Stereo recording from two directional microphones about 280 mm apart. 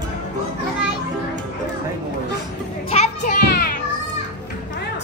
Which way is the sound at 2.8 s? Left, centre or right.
Left.